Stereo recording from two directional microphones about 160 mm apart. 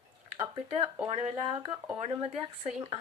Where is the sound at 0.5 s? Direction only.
35° right (ahead or behind).